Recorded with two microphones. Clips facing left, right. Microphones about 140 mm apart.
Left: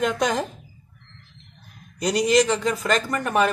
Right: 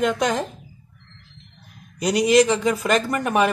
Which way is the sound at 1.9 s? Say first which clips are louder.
Right 3 dB; 5° right (ahead or behind).